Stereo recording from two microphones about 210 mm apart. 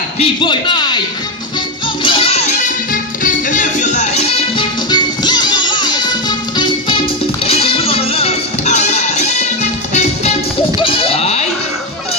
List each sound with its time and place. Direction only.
0.2 s a man's voice: 20° left (ahead or behind)
2.0 s music: 25° left (ahead or behind)
10.8 s sheep: 25° left (ahead or behind)